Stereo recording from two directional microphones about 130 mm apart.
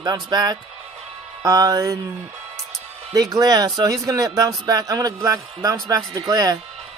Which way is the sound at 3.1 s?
30° right (ahead or behind).